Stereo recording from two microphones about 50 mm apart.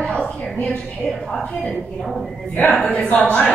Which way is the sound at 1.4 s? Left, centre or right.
Left.